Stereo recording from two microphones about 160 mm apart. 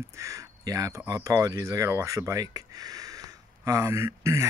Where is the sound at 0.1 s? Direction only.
20° right (ahead or behind).